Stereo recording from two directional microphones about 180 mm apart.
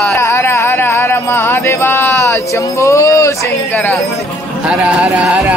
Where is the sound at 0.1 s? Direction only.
15° left (ahead or behind).